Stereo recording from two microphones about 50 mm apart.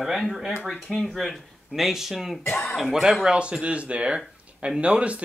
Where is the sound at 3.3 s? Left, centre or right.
Right.